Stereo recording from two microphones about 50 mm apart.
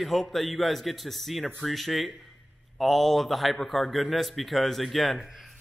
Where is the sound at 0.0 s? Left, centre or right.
Centre.